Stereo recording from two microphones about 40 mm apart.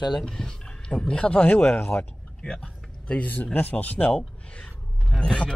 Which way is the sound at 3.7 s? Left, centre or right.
Left.